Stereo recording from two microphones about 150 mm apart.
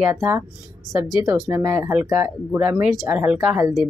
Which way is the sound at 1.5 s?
15° right (ahead or behind).